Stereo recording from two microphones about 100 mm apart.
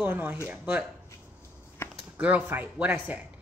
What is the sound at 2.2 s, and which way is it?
Speech, 15° right (ahead or behind).